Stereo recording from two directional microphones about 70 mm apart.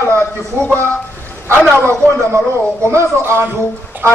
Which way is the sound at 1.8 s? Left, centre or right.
Right.